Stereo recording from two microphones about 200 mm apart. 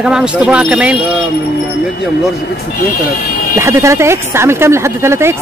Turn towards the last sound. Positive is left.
turn(degrees=-15)  # may be behind; listen again after turning